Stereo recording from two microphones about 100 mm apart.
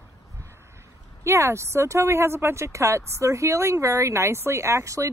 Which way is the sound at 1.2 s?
30° right (ahead or behind).